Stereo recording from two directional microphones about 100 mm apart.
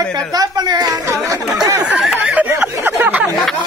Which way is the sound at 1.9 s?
5° right (ahead or behind).